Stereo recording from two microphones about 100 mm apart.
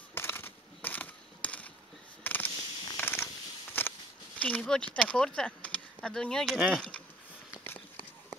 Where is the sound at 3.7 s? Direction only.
20° left (ahead or behind).